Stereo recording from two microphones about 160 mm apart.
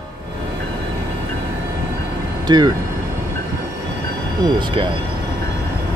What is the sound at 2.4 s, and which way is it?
Speech, 25° right (ahead or behind).